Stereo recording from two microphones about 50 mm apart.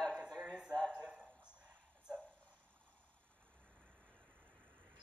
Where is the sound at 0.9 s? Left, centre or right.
Right.